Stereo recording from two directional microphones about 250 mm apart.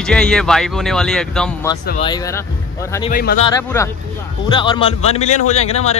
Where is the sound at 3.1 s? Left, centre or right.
Left.